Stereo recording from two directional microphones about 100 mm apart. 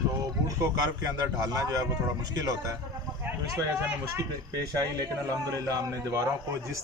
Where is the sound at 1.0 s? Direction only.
35° right (ahead or behind).